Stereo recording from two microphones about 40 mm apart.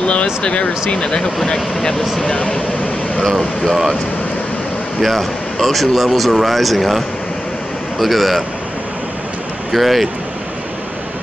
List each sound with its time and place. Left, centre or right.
0.0 s speech: left
3.3 s speech: centre
5.0 s speech: centre
8.0 s speech: centre
9.7 s speech: centre